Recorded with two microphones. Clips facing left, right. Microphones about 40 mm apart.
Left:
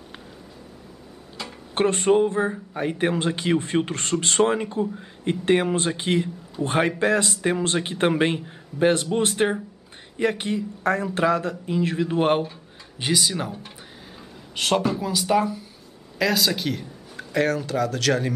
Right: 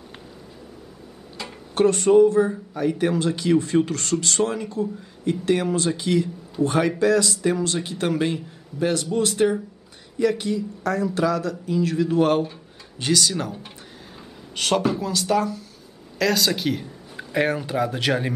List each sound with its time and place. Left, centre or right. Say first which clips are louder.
1.8 s a man's voice: right 4 dB; left
13.0 s speech: right 2 dB; centre
16.2 s speech: right 1 dB; centre; by 18.3 s right